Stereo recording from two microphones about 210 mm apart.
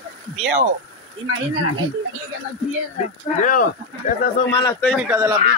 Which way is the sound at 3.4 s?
40° left (ahead or behind).